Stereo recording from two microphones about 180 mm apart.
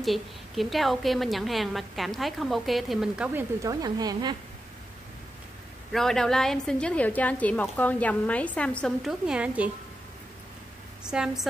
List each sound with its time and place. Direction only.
0.0 s a woman's voice: centre (ahead or behind)
3.8 s speech: 20° right (ahead or behind)
5.9 s a woman's voice: centre (ahead or behind)
11.1 s a woman's voice: 5° right (ahead or behind)